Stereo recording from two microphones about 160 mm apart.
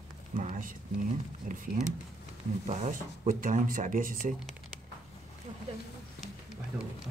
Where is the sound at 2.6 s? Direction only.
50° right (ahead or behind).